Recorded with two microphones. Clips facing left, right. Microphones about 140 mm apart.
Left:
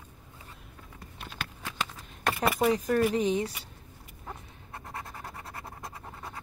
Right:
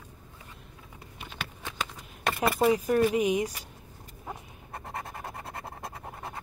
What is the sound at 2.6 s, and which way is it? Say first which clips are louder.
Speech: right 2 dB; 10° right (ahead or behind).